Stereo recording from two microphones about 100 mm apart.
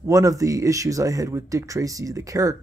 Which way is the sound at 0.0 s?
35° right (ahead or behind).